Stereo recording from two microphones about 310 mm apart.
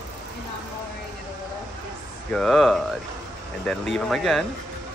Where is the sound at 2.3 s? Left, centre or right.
Centre.